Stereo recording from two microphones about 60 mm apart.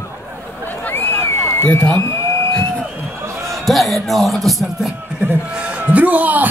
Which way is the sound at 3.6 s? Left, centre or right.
Centre.